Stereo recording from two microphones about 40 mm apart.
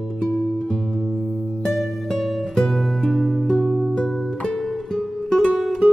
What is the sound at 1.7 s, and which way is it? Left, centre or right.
Music, centre.